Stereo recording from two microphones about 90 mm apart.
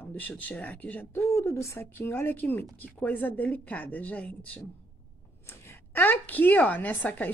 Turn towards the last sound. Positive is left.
turn(degrees=20)  # may be behind; listen again after turning